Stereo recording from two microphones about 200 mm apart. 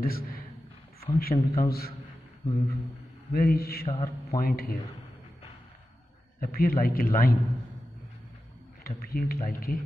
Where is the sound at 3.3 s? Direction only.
50° left (ahead or behind).